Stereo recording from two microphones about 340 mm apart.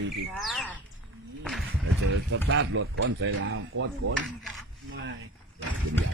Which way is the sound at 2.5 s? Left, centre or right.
Right.